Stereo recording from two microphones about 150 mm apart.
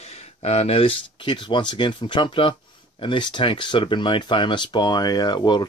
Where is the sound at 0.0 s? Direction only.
45° left (ahead or behind).